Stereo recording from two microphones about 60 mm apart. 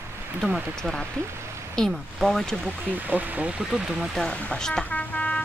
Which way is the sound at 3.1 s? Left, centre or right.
Right.